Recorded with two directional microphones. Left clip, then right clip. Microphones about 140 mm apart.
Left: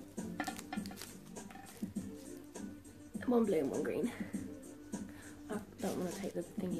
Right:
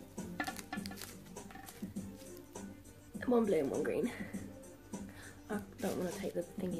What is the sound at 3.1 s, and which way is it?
A woman's voice, centre (ahead or behind).